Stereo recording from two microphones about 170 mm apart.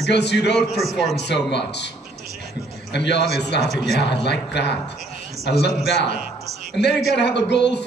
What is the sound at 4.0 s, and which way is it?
Speech, 85° left.